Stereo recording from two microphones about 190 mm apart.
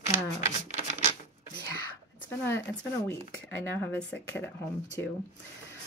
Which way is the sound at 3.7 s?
10° left (ahead or behind).